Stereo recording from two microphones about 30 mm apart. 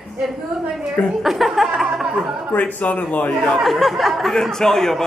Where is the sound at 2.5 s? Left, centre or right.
Left.